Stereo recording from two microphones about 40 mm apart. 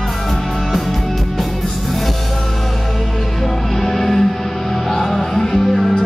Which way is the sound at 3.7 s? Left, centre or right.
Centre.